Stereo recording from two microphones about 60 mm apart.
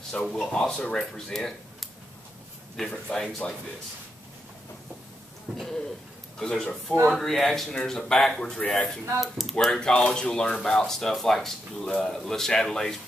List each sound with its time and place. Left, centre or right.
0.1 s speech: centre
2.9 s speech: centre
6.4 s speech: centre
8.5 s speech: centre
9.2 s speech: centre